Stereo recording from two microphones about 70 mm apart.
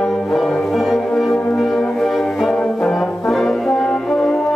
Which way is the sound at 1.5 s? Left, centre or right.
Centre.